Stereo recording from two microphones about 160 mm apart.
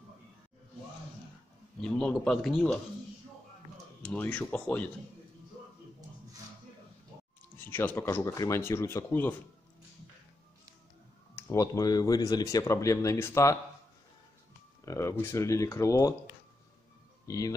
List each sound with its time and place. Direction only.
1.8 s a man's voice: 5° left (ahead or behind)
4.1 s speech: 10° left (ahead or behind)
7.5 s speech: 15° left (ahead or behind)
11.3 s speech: 15° left (ahead or behind)
14.9 s speech: 20° left (ahead or behind)
17.3 s speech: 20° left (ahead or behind)